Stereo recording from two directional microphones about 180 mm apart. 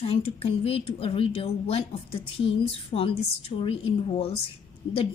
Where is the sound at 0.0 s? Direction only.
35° left (ahead or behind).